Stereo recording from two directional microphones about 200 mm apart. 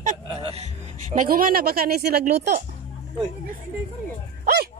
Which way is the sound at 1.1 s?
45° right (ahead or behind).